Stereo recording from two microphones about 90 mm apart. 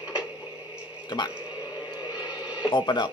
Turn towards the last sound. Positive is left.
turn(degrees=55)  # may be behind; listen again after turning